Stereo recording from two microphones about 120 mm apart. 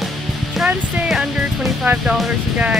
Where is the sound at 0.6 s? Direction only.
Centre (ahead or behind).